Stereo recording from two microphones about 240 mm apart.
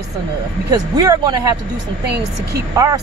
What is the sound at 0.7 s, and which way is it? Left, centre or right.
Speech, centre.